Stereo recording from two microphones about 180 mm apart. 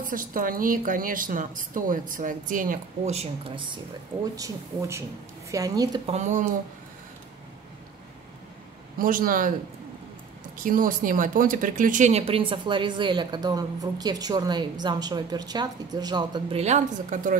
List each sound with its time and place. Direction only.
0.0 s a woman's voice: 50° right (ahead or behind); by 3.8 s 25° right (ahead or behind)
4.4 s speech: 15° right (ahead or behind)
6.0 s speech: 40° right (ahead or behind)
8.9 s a woman's voice: 50° right (ahead or behind)
10.6 s speech: 50° right (ahead or behind)